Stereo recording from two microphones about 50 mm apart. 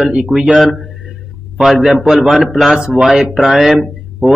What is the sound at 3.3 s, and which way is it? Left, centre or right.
Speech, centre.